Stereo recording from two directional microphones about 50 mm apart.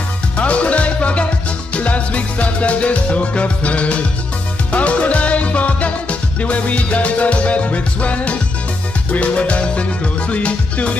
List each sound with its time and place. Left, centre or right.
0.4 s music: left